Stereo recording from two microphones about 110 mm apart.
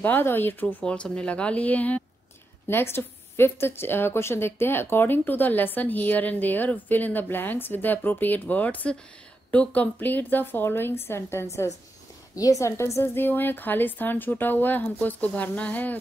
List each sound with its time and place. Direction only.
0.0 s a woman's voice: 20° left (ahead or behind)